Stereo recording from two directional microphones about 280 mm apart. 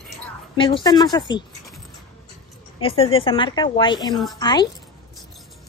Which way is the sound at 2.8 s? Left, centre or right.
Centre.